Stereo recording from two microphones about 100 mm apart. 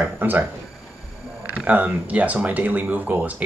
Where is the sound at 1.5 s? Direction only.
15° right (ahead or behind).